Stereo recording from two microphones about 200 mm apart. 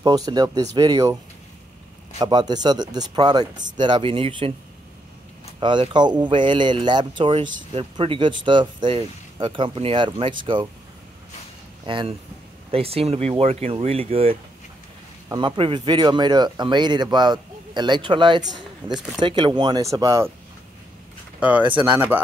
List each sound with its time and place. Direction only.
0.0 s speech: 20° right (ahead or behind)
2.1 s speech: 20° right (ahead or behind)
5.6 s speech: 20° right (ahead or behind)
11.8 s speech: 25° right (ahead or behind)
21.4 s speech: 10° right (ahead or behind)